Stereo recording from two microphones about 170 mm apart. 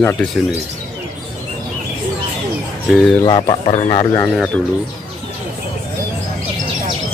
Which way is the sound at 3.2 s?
25° left (ahead or behind).